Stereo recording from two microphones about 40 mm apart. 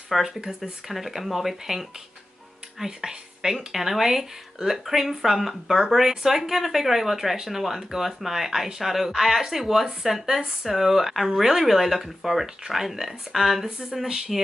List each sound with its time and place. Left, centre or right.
0.1 s speech: centre
0.6 s speech: centre
13.7 s speech: centre